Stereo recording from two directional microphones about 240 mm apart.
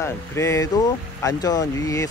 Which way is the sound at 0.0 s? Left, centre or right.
Centre.